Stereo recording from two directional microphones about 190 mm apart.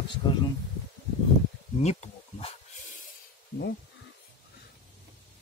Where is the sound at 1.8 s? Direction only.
35° left (ahead or behind).